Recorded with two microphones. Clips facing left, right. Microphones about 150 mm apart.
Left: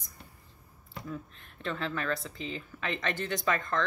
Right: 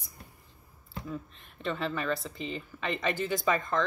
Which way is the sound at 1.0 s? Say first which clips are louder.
Right 1 dB; centre (ahead or behind).